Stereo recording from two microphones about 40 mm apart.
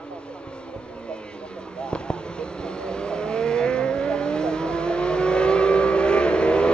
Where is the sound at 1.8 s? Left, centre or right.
Left.